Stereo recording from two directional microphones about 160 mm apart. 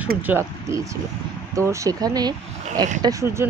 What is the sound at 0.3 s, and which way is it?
Speech, 15° right (ahead or behind).